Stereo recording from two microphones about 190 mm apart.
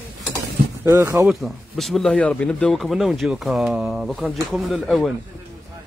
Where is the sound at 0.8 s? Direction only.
15° right (ahead or behind).